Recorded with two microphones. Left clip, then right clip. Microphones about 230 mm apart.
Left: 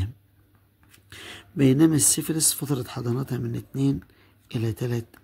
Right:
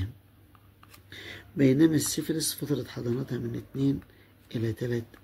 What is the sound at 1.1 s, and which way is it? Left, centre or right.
Speech, left.